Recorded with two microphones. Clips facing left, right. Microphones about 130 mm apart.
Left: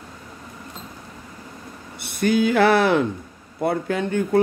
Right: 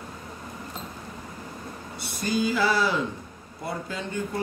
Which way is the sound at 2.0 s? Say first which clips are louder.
Left 7 dB; 60° left (ahead or behind).